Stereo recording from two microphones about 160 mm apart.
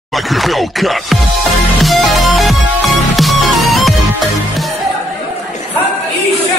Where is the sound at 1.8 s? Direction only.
Centre (ahead or behind).